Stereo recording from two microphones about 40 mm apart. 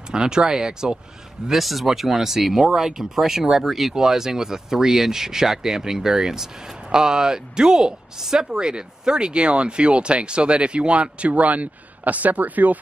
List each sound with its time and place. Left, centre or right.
0.1 s speech: centre
1.5 s speech: centre; by 12.7 s right